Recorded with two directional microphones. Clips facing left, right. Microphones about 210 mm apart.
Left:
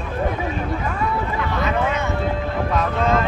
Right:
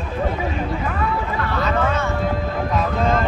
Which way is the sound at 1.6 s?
15° left (ahead or behind).